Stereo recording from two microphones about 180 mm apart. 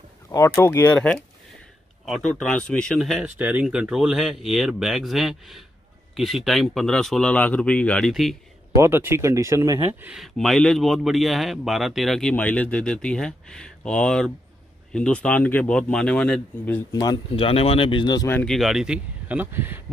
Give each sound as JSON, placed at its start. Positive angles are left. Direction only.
{"t": 0.3, "sound": "speech", "side_deg": 15}
{"t": 8.7, "sound": "speech", "side_deg": -15}
{"t": 16.9, "sound": "speech", "side_deg": 20}
{"t": 18.3, "sound": "speech", "side_deg": 5}